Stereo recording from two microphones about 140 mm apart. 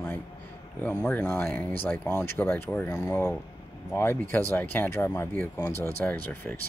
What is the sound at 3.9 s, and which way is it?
Speech, 15° left (ahead or behind).